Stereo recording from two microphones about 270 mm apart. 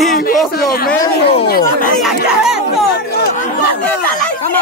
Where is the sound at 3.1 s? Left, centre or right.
Left.